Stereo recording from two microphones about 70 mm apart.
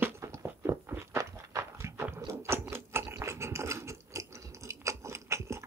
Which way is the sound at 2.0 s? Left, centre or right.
Right.